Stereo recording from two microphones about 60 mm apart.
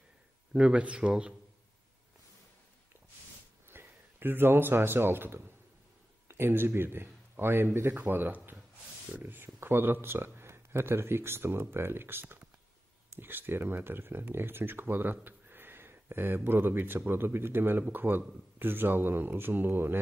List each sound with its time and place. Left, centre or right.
0.5 s speech: centre
3.6 s a man's voice: right